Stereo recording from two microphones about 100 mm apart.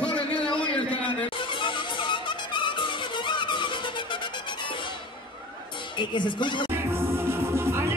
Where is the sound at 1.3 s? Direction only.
55° left (ahead or behind).